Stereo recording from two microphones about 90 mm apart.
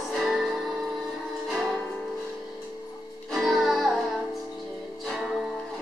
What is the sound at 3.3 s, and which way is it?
Music, centre (ahead or behind).